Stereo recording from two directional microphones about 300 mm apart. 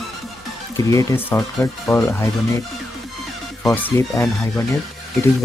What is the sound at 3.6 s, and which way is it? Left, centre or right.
Speech, centre.